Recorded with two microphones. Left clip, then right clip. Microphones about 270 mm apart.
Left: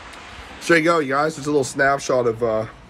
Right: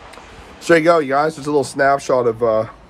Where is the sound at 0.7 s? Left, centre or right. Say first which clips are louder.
Right 4 dB; centre.